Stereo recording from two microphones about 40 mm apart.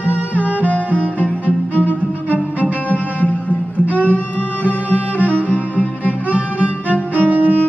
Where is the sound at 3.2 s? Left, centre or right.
Left.